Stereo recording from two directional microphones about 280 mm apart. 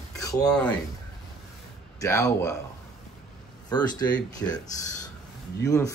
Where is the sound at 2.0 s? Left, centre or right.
Centre.